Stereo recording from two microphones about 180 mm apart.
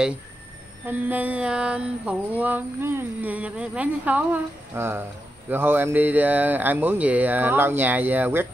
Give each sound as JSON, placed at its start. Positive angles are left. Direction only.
{"t": 0.8, "sound": "mantra", "side_deg": -10}